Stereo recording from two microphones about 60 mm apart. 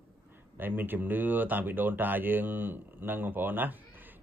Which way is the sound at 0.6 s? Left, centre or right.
Right.